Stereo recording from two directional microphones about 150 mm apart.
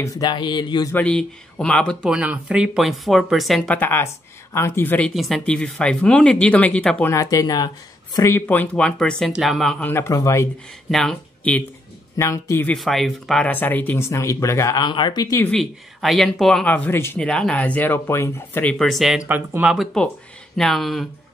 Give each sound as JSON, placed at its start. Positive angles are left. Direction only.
{"t": 0.0, "sound": "speech", "side_deg": 25}
{"t": 0.9, "sound": "speech", "side_deg": 5}
{"t": 2.0, "sound": "speech", "side_deg": -5}
{"t": 5.1, "sound": "speech", "side_deg": 0}
{"t": 7.1, "sound": "speech", "side_deg": 20}
{"t": 10.9, "sound": "speech", "side_deg": 5}
{"t": 12.2, "sound": "speech", "side_deg": 20}
{"t": 12.7, "sound": "speech", "side_deg": 0}
{"t": 15.4, "sound": "speech", "side_deg": 5}
{"t": 19.2, "sound": "speech", "side_deg": -10}